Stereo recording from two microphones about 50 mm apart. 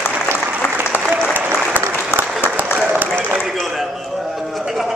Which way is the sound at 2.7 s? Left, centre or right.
Right.